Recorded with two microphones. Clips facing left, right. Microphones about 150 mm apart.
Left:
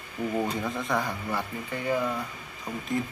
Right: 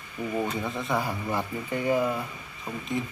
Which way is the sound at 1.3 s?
20° right (ahead or behind).